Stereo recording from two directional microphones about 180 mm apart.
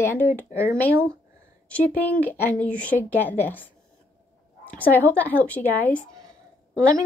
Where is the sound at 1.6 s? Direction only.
5° left (ahead or behind).